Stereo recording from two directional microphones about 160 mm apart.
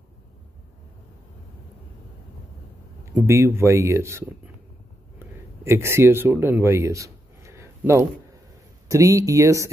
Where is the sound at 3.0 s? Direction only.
15° right (ahead or behind).